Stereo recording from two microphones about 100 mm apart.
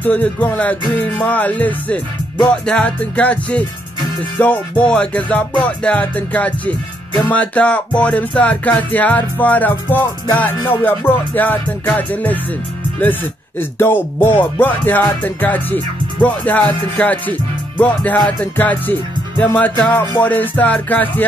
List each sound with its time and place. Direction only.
0.0 s music: 15° left (ahead or behind)
13.6 s music: 20° left (ahead or behind)